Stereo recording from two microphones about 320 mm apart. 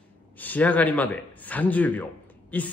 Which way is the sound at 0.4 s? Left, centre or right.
Centre.